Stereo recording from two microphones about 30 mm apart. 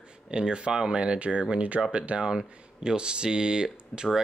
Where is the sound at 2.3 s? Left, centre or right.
Centre.